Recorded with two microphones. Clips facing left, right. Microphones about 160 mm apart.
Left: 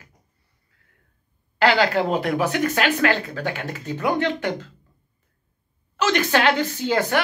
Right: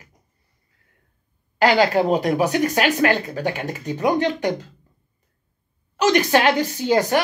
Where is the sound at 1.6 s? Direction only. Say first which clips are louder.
Right 2 dB; 40° right (ahead or behind).